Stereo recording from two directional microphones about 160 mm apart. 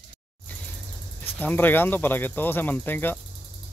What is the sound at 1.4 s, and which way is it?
Speech, 10° left (ahead or behind).